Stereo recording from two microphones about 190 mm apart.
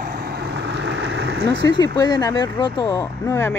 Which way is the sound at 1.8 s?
15° left (ahead or behind).